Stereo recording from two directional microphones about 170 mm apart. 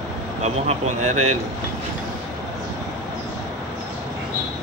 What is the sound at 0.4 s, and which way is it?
Speech, 45° right (ahead or behind).